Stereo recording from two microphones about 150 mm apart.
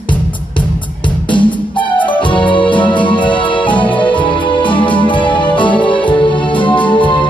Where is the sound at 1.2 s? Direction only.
30° left (ahead or behind).